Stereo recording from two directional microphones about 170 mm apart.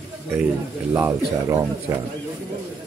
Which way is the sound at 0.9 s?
15° right (ahead or behind).